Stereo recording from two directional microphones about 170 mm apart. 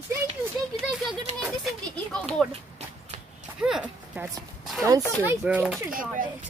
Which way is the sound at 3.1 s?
35° right (ahead or behind).